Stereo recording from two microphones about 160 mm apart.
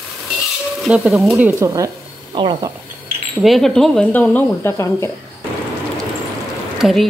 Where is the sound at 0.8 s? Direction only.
Centre (ahead or behind).